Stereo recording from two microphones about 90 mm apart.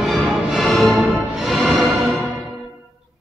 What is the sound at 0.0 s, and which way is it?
Music, centre (ahead or behind).